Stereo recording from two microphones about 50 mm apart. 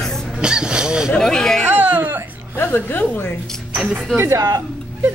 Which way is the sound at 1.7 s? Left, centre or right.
Right.